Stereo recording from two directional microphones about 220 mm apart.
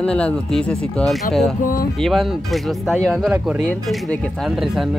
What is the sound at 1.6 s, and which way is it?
Speech, 40° left (ahead or behind).